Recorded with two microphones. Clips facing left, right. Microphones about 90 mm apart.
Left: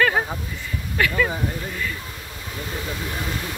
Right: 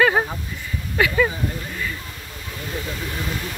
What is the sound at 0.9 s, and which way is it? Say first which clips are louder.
Speech: right 2 dB; 15° right (ahead or behind).